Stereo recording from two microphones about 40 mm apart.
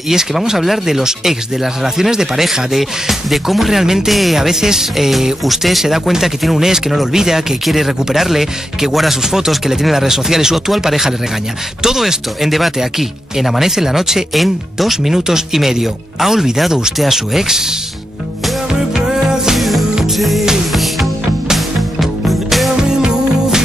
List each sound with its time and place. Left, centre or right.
0.1 s speech: centre
18.7 s music: centre
20.2 s music: centre
22.8 s music: centre